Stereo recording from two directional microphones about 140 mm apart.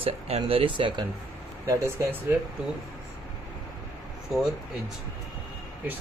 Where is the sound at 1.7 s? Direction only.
15° right (ahead or behind).